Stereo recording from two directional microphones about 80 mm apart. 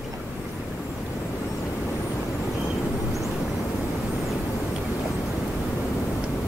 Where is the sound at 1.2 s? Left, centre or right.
Left.